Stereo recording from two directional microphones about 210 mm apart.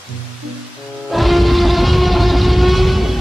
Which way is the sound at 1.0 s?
Centre (ahead or behind).